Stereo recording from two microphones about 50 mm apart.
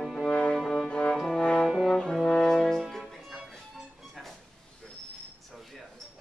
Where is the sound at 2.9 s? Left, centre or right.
Centre.